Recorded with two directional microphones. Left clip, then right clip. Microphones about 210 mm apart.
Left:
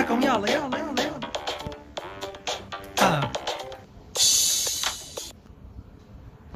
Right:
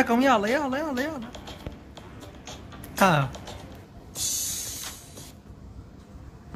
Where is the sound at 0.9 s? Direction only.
50° left (ahead or behind).